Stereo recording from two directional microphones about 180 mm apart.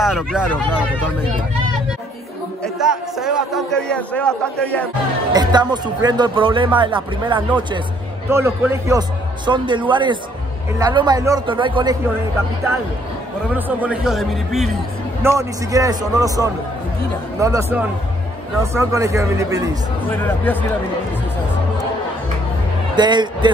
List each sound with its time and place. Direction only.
0.0 s a man's voice: centre (ahead or behind)
2.6 s a man's voice: centre (ahead or behind)
5.3 s speech: 25° right (ahead or behind)
8.3 s speech: 15° right (ahead or behind)
9.5 s speech: 25° right (ahead or behind)
13.6 s a man's voice: 10° right (ahead or behind)
15.2 s speech: 15° right (ahead or behind)
20.1 s speech: 10° left (ahead or behind)
22.9 s speech: 25° right (ahead or behind)